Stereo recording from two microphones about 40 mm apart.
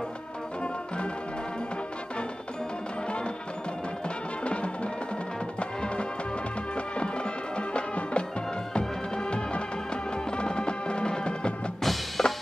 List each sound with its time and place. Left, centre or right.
4.5 s music: left
7.5 s music: left
11.8 s music: centre